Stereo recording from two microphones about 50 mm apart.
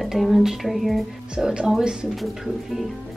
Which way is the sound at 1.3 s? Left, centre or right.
Centre.